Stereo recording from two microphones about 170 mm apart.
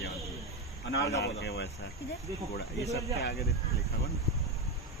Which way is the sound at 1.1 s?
90° left.